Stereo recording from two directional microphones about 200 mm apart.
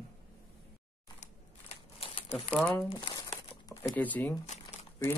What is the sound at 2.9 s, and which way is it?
Crumpling, 20° left (ahead or behind).